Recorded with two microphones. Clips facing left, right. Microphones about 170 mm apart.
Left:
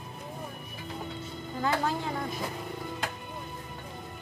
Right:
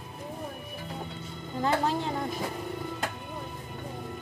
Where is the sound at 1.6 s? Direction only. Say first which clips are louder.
Right 2 dB; 25° right (ahead or behind).